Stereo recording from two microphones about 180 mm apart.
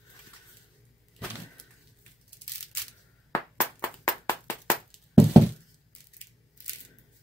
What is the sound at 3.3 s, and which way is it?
Clapping, 15° left (ahead or behind).